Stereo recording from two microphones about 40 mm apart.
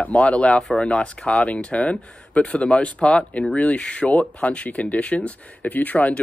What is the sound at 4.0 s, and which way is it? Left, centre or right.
Speech, left.